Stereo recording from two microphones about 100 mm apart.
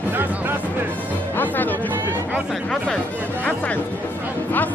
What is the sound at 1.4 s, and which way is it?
Music, 20° left (ahead or behind).